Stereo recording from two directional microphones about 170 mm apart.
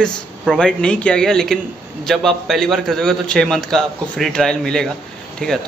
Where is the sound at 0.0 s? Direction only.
Centre (ahead or behind).